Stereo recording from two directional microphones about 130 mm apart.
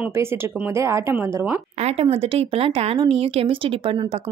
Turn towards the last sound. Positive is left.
turn(degrees=-40)  # may be behind; listen again after turning